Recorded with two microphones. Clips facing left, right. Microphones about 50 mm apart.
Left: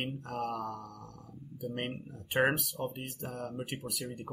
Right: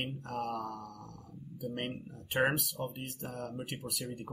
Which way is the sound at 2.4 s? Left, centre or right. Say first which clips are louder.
Left 2 dB; centre.